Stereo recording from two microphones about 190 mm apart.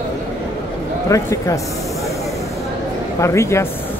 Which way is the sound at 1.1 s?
15° left (ahead or behind).